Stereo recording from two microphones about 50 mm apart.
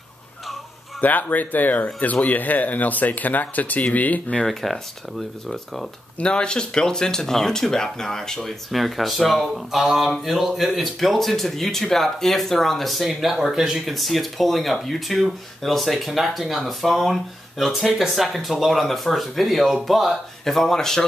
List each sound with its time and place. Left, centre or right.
1.0 s speech: left
4.5 s speech: centre
6.1 s speech: left